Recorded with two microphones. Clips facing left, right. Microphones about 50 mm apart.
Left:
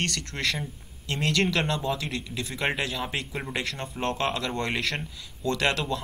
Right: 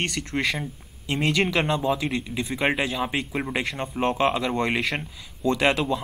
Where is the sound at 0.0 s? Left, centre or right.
Centre.